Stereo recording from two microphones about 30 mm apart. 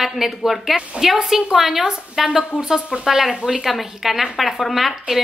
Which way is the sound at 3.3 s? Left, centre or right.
Right.